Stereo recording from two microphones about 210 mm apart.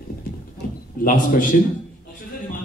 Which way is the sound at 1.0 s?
40° left (ahead or behind).